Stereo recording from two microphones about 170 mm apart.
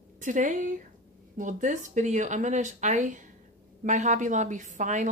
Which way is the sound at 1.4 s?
50° right (ahead or behind).